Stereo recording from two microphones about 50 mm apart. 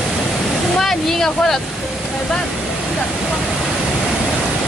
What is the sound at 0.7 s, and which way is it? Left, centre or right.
Speech, centre.